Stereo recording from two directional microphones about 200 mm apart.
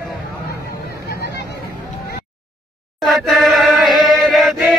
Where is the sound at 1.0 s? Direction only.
55° left (ahead or behind).